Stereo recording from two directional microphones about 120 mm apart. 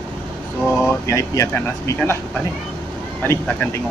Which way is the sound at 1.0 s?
25° left (ahead or behind).